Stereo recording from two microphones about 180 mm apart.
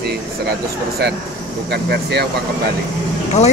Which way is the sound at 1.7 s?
65° right (ahead or behind).